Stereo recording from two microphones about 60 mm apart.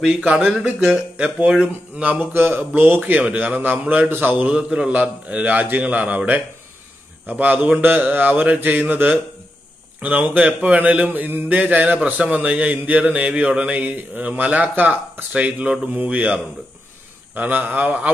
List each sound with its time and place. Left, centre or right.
0.4 s speech: centre
0.7 s mantra: right
2.1 s mantra: right
3.0 s mantra: right
4.5 s mantra: centre